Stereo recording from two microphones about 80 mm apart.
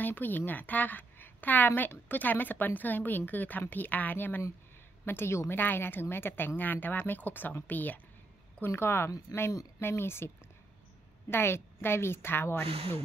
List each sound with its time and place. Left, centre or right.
0.0 s a woman's voice: left